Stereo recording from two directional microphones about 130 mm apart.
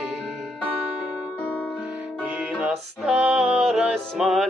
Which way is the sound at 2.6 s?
5° right (ahead or behind).